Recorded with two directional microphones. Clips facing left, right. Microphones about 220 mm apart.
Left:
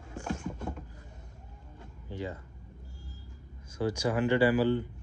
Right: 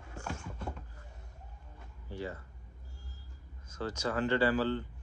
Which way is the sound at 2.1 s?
20° left (ahead or behind).